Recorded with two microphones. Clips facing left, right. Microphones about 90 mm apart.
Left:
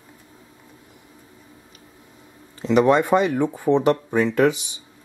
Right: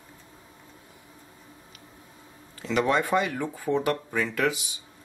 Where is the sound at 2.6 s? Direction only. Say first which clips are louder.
Left 8 dB; 20° left (ahead or behind).